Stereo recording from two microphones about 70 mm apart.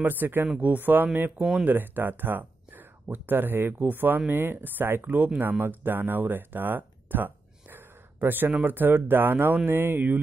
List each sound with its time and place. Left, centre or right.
0.0 s speech: right
1.4 s speech: centre
1.7 s speech: right